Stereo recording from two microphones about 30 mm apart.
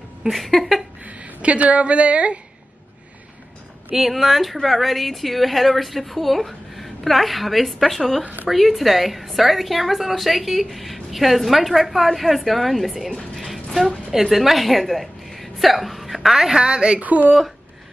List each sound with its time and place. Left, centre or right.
0.3 s a woman's voice: centre
1.0 s speech: right
3.9 s a woman's voice: centre
13.1 s music: centre
14.1 s a woman's voice: centre
16.5 s a woman's voice: right
17.0 s speech: right